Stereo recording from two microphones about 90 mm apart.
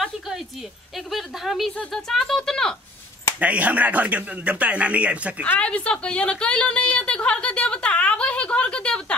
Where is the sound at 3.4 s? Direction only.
15° right (ahead or behind).